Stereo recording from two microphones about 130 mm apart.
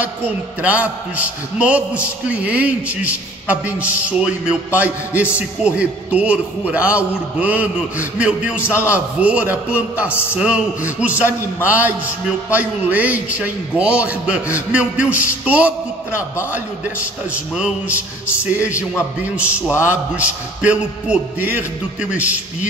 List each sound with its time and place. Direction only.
0.6 s a man's voice: 10° right (ahead or behind)
16.1 s a man's voice: 20° left (ahead or behind)
18.4 s a man's voice: 10° right (ahead or behind)
19.9 s a man's voice: 10° right (ahead or behind)